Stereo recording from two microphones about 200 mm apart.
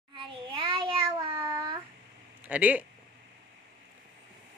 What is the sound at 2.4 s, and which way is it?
Speech, 10° right (ahead or behind).